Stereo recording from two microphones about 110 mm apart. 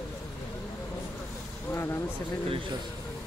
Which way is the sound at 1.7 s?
25° left (ahead or behind).